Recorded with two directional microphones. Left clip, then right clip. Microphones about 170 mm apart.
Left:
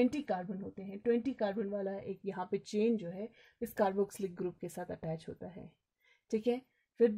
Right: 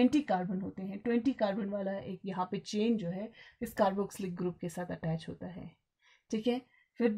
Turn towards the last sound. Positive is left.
turn(degrees=50)  # may be behind; listen again after turning